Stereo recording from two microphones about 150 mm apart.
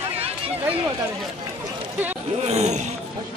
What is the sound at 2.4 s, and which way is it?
Roaring cats, 45° right (ahead or behind).